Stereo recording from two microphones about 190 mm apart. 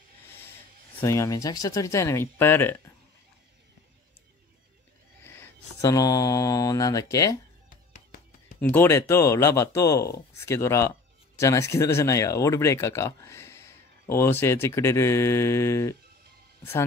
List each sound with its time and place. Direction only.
1.0 s speech: 15° left (ahead or behind)
5.2 s speech: 10° left (ahead or behind)
8.7 s speech: 15° left (ahead or behind)